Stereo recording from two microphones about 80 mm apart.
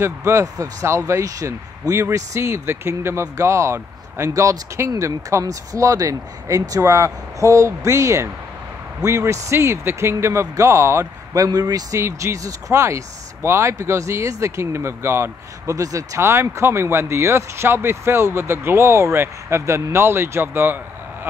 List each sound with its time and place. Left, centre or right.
0.0 s speech: right
12.0 s speech: right